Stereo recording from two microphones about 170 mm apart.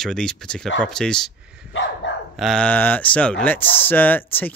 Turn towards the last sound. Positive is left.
turn(degrees=10)  # may be behind; listen again after turning